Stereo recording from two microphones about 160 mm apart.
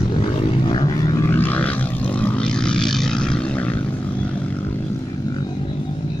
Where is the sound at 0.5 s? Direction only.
30° left (ahead or behind); by 3.8 s 10° left (ahead or behind).